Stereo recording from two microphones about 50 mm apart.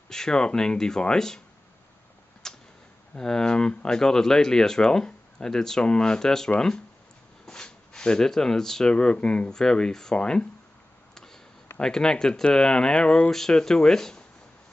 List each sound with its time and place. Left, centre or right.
0.1 s speech: centre
2.4 s tick-tock: centre
3.2 s speech: centre
11.8 s speech: centre